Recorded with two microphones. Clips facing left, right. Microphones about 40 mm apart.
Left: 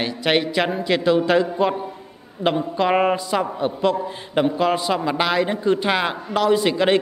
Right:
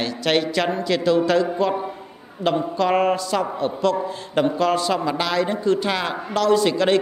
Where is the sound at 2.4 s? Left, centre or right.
Right.